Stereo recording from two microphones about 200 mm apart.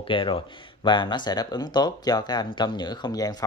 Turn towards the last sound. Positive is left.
turn(degrees=20)  # may be behind; listen again after turning